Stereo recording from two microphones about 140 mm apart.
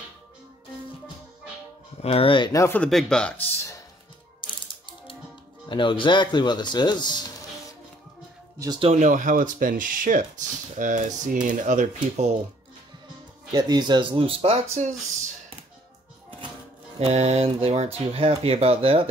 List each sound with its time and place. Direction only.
2.0 s speech: 45° left (ahead or behind)
2.5 s speech: 20° left (ahead or behind)
2.8 s speech: 5° left (ahead or behind)
4.4 s ratchet: 40° left (ahead or behind)
5.7 s speech: 35° left (ahead or behind)
8.7 s speech: 50° right (ahead or behind); by 12.3 s 65° right (ahead or behind)
13.5 s speech: 30° right (ahead or behind)
17.0 s speech: 50° right (ahead or behind)